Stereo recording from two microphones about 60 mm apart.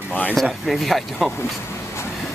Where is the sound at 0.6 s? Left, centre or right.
Centre.